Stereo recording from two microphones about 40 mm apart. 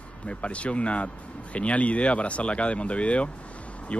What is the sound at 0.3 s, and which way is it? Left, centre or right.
Speech, left.